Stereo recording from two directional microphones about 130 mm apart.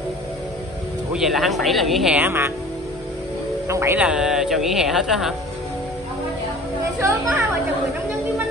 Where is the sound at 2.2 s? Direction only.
15° right (ahead or behind).